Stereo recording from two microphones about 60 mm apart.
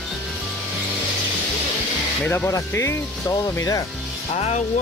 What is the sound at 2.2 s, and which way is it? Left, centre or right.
Speech, left.